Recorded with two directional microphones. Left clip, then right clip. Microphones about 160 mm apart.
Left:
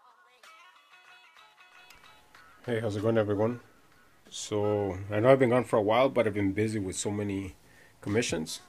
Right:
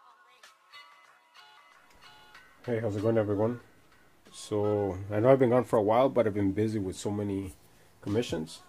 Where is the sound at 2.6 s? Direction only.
5° left (ahead or behind).